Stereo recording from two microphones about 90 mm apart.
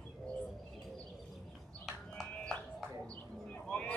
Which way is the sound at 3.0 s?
15° left (ahead or behind).